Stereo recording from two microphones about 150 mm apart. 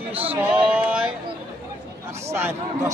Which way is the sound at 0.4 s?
10° right (ahead or behind).